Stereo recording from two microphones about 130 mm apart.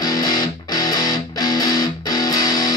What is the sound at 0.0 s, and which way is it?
Music, 30° left (ahead or behind).